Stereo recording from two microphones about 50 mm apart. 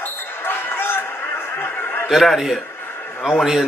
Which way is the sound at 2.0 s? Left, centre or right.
Centre.